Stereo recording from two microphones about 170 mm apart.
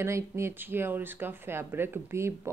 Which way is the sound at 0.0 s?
15° right (ahead or behind).